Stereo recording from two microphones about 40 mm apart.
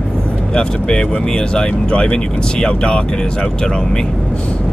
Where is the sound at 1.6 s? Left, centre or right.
Left.